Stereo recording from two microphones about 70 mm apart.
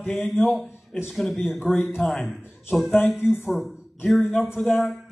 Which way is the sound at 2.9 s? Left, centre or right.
Left.